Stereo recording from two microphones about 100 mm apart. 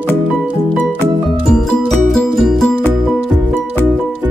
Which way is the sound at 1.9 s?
5° left (ahead or behind).